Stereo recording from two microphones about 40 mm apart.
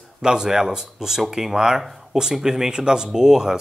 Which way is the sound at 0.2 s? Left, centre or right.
Centre.